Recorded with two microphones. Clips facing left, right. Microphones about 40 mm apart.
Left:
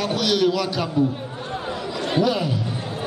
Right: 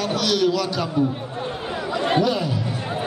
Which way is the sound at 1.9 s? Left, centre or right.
Right.